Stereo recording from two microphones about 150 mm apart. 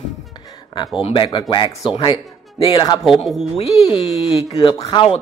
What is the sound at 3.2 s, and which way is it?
Speech, 40° left (ahead or behind).